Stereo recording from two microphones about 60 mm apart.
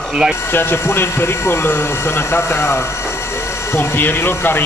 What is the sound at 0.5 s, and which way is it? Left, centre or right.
Speech, left.